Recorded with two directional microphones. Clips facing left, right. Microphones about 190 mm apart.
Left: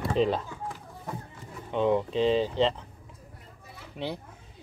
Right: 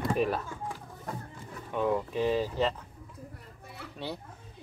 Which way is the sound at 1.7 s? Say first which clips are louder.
Left 4 dB; 20° left (ahead or behind).